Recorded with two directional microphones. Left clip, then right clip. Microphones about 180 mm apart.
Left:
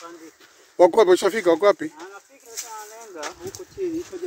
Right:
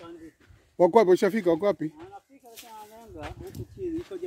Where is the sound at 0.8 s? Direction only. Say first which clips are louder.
Left 4 dB; 20° right (ahead or behind).